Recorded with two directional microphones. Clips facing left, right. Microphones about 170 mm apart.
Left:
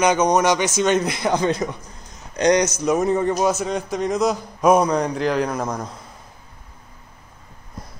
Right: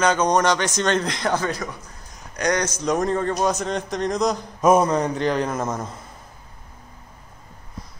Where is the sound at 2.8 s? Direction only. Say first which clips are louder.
Left 3 dB; 5° left (ahead or behind).